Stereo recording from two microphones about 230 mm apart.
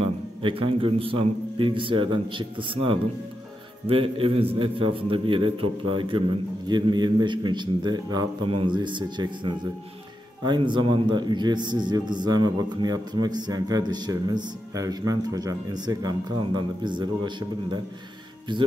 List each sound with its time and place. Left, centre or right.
0.0 s a man's voice: right